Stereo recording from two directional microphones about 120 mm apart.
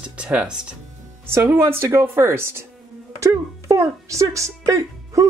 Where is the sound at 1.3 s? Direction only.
20° right (ahead or behind).